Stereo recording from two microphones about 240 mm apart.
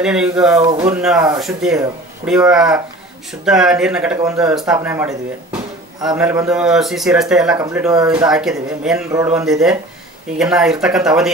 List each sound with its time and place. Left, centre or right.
0.0 s speech: centre
7.6 s speech: centre
8.3 s speech: centre
9.1 s speech: centre
9.5 s speech: centre